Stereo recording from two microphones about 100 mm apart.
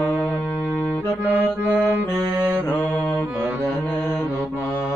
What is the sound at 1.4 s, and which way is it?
Music, 20° right (ahead or behind).